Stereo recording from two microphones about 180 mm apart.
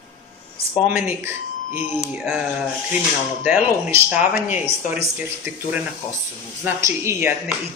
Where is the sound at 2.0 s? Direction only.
5° right (ahead or behind).